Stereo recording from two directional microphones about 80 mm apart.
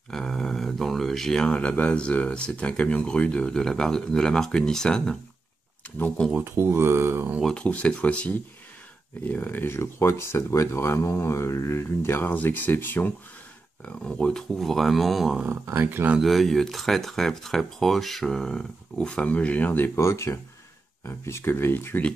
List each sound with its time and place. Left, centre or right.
0.1 s speech: centre
6.4 s speech: right
7.5 s speech: centre
13.8 s speech: centre
15.6 s speech: right
16.2 s speech: centre; by 22.0 s left